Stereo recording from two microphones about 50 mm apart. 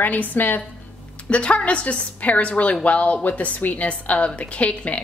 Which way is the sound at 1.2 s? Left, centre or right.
Left.